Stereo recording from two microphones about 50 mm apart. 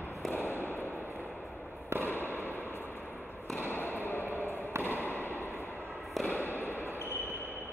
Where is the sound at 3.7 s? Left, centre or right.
Left.